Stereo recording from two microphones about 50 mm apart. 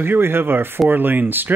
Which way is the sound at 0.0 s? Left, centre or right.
Right.